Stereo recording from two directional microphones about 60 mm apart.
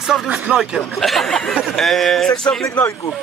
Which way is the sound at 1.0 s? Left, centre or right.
Centre.